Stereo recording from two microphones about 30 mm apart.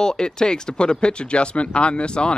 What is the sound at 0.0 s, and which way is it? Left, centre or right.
Speech, left.